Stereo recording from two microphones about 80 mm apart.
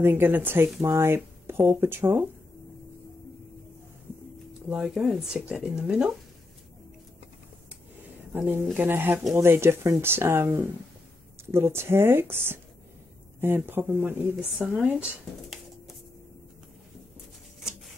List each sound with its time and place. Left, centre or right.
0.0 s speech: right
4.6 s a sound: centre
4.8 s speech: centre
5.4 s speech: centre
8.3 s speech: right
13.7 s speech: right